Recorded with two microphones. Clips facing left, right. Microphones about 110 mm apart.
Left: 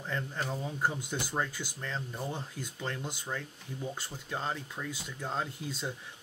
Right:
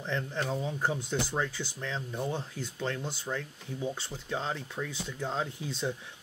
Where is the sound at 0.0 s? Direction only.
5° left (ahead or behind).